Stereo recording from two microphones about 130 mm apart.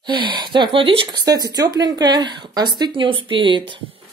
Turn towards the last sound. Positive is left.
turn(degrees=-40)  # may be behind; listen again after turning